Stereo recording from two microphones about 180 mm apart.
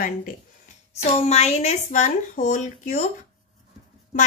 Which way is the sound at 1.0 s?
35° left (ahead or behind).